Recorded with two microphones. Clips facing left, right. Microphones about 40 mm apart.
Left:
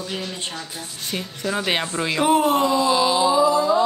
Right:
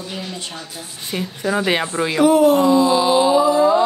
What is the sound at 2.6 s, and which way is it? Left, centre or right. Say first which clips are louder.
Speech: right 4 dB; centre.